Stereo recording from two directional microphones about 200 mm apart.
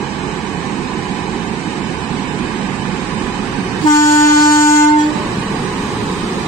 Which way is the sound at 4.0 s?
15° left (ahead or behind).